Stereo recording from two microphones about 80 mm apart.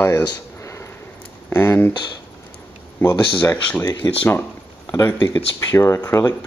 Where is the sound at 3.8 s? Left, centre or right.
Left.